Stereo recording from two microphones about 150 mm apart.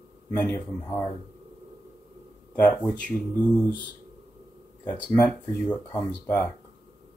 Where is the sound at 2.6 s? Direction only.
10° left (ahead or behind).